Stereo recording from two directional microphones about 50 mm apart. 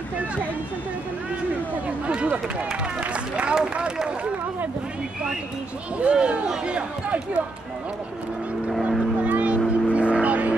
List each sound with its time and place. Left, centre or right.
3.0 s speech: right
5.9 s speech: right
9.2 s vehicle: right